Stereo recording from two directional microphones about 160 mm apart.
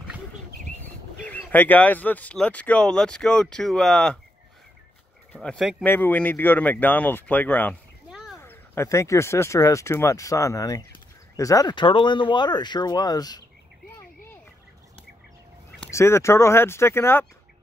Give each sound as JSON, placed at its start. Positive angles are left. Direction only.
{"t": 1.2, "sound": "speech", "side_deg": 10}
{"t": 5.3, "sound": "speech", "side_deg": 5}
{"t": 5.9, "sound": "speech", "side_deg": 10}
{"t": 8.1, "sound": "a sound", "side_deg": 0}
{"t": 8.4, "sound": "speech", "side_deg": 15}
{"t": 15.8, "sound": "speech", "side_deg": 15}